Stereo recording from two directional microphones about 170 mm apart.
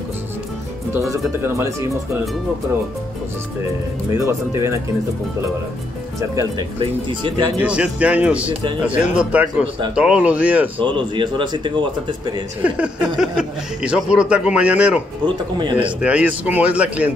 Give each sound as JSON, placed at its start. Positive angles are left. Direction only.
{"t": 0.9, "sound": "speech", "side_deg": -15}
{"t": 4.2, "sound": "speech", "side_deg": -15}
{"t": 6.8, "sound": "speech", "side_deg": -30}
{"t": 7.6, "sound": "speech", "side_deg": -5}
{"t": 10.8, "sound": "speech", "side_deg": -30}
{"t": 12.6, "sound": "speech", "side_deg": -5}
{"t": 15.2, "sound": "speech", "side_deg": -25}
{"t": 16.0, "sound": "speech", "side_deg": -10}